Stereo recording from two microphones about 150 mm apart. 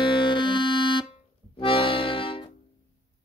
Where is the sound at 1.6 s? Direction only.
35° left (ahead or behind).